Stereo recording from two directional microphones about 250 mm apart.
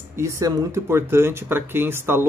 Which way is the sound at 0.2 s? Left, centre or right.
Centre.